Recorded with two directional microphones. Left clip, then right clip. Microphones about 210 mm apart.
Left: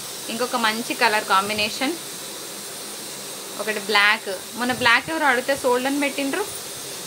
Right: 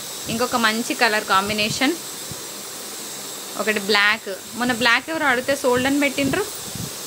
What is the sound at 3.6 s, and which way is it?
Speech, 25° right (ahead or behind).